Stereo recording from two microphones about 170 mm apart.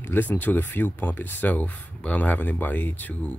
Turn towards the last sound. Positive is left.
turn(degrees=10)  # may be behind; listen again after turning